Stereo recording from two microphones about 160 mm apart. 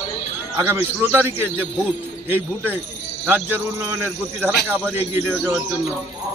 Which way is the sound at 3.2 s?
15° right (ahead or behind).